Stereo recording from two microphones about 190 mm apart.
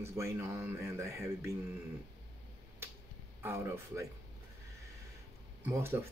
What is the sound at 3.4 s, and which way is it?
Speech, 15° right (ahead or behind).